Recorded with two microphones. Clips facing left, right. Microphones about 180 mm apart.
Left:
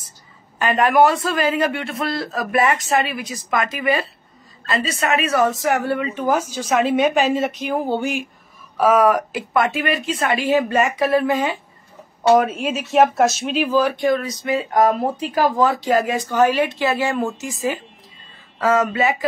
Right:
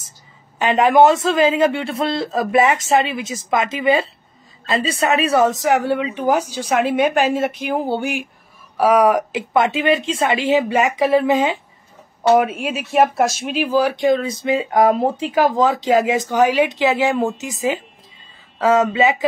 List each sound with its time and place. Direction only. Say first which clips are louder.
0.6 s a woman's voice: right 3 dB; 25° right (ahead or behind)
5.6 s a woman's voice: right 3 dB; 15° right (ahead or behind)
6.8 s a woman's voice: even; 55° right (ahead or behind)
7.6 s a woman's voice: right 1 dB; 15° right (ahead or behind)
8.0 s a woman's voice: even; 60° right (ahead or behind)
8.7 s speech: right 1 dB; 15° right (ahead or behind)
12.4 s speech: left 1 dB; centre (ahead or behind); by 19.2 s 20° right (ahead or behind)